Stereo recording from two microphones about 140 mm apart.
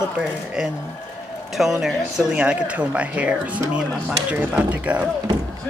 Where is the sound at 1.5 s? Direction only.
5° right (ahead or behind).